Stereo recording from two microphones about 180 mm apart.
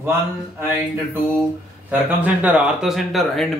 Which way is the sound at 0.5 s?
10° right (ahead or behind).